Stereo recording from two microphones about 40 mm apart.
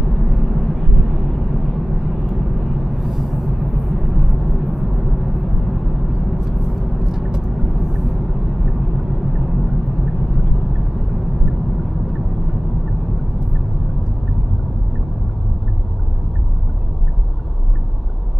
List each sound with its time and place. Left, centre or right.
0.0 s vehicle: centre